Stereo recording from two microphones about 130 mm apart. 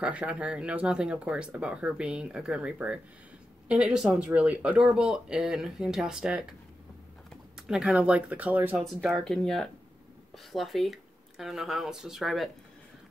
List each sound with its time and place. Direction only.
0.0 s speech: 10° right (ahead or behind)
7.6 s speech: 5° right (ahead or behind)
8.7 s speech: centre (ahead or behind)